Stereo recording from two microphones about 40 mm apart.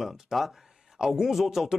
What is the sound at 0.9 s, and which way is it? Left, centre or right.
Speech, centre.